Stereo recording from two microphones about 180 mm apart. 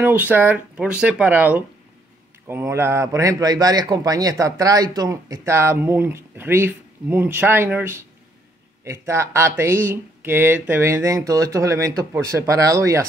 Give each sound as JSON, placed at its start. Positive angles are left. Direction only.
{"t": 0.0, "sound": "a man's voice", "side_deg": -10}